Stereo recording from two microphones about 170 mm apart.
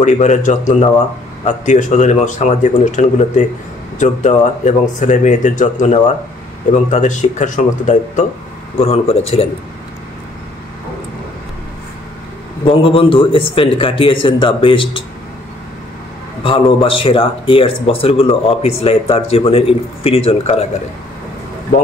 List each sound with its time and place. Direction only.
0.0 s speech: 45° left (ahead or behind)
12.6 s speech: 30° left (ahead or behind)
16.4 s speech: 30° left (ahead or behind)